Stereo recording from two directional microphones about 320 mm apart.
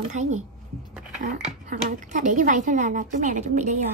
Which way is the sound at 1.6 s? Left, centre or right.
Right.